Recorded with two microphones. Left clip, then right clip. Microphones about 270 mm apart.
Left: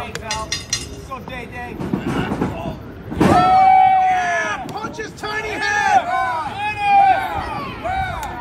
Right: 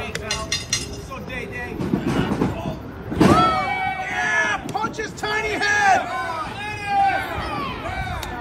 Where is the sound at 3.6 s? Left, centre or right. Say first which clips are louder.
Left 13 dB; right.